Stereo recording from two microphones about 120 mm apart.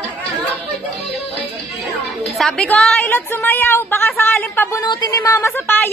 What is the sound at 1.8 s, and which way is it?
A woman's voice, centre (ahead or behind).